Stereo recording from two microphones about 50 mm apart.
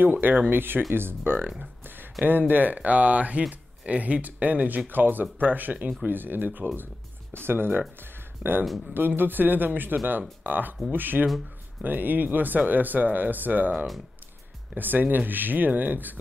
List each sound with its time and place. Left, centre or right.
0.0 s speech: right
8.0 s music: right
8.9 s speech: right